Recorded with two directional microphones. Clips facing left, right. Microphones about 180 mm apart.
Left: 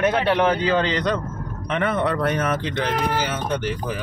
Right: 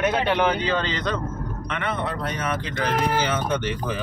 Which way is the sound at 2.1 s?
65° left (ahead or behind).